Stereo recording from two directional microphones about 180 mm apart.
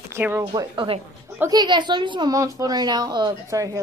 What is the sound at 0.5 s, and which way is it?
A woman's voice, 30° right (ahead or behind).